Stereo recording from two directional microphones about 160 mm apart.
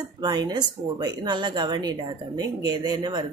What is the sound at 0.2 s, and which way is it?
A woman's voice, 25° right (ahead or behind).